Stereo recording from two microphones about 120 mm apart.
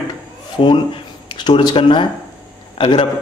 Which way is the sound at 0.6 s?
45° left (ahead or behind).